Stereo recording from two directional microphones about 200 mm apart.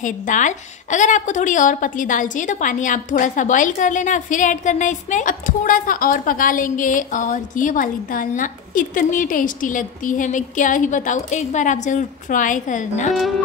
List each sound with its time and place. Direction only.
0.0 s a woman's voice: 40° left (ahead or behind)